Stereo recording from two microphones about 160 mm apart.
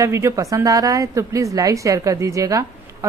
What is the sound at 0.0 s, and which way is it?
A woman's voice, 20° right (ahead or behind).